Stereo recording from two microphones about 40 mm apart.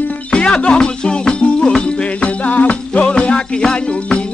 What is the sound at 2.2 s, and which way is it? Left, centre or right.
Music, left.